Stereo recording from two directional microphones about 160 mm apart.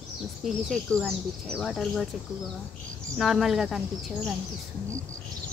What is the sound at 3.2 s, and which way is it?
Speech, centre (ahead or behind).